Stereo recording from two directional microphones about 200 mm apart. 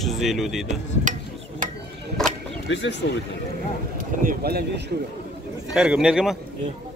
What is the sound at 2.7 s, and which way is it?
Speech, 65° left (ahead or behind).